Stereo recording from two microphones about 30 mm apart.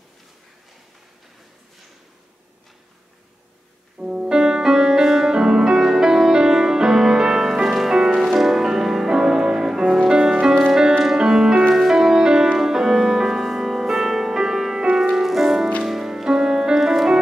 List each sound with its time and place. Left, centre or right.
4.0 s music: centre
16.3 s music: right
16.7 s music: centre